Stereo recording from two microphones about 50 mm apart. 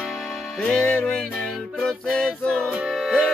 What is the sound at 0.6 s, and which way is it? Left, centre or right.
Music, centre.